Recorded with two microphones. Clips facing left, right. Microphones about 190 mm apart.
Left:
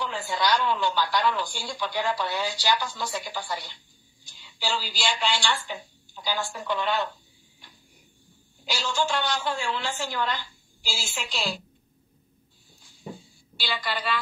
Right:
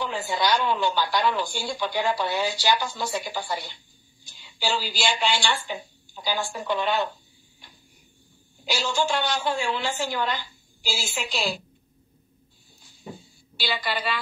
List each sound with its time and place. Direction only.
0.0 s a sound: 20° right (ahead or behind)
0.4 s speech: 20° right (ahead or behind)
1.2 s a woman's voice: 15° right (ahead or behind)
1.5 s speech: 25° right (ahead or behind)
4.7 s a woman's voice: 20° right (ahead or behind)
8.6 s a woman's voice: 10° right (ahead or behind)
13.6 s a woman's voice: 5° right (ahead or behind)